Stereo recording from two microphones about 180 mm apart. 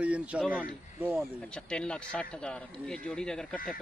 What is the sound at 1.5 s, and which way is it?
Speech, 5° left (ahead or behind).